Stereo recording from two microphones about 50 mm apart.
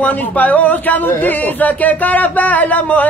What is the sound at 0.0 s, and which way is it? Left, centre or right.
Speech, left.